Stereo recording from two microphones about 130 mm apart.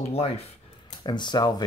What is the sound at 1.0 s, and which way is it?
Speech, 35° left (ahead or behind).